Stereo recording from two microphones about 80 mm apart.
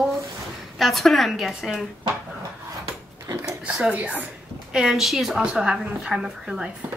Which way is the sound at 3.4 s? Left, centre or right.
Centre.